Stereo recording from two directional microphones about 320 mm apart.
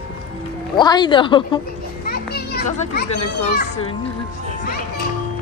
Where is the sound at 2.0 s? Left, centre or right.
Left.